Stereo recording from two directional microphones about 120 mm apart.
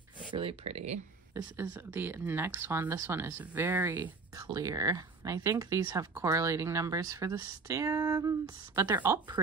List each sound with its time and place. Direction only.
0.3 s speech: 50° right (ahead or behind)
1.3 s speech: 20° right (ahead or behind)
4.4 s speech: 30° right (ahead or behind)